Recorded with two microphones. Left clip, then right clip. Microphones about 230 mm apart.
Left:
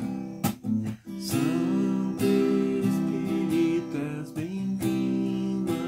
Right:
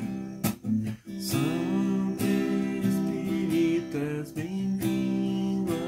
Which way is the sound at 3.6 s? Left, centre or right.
Centre.